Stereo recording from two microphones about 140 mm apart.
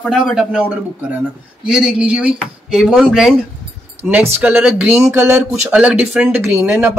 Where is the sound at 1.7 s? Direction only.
5° right (ahead or behind).